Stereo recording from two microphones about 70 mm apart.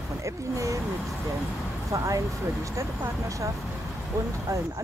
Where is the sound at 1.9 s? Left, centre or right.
Right.